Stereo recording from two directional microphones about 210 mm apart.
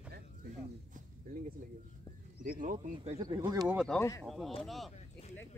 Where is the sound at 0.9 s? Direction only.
40° right (ahead or behind).